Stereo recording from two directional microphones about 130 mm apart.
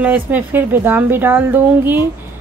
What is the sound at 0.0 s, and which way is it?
A woman's voice, 10° right (ahead or behind).